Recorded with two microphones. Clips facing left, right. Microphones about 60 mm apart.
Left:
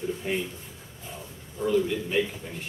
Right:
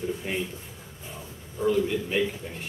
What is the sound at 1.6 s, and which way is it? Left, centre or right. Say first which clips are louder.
Speech: right 1 dB; centre.